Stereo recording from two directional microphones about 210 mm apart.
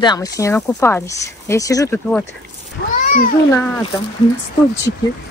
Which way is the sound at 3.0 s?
40° left (ahead or behind).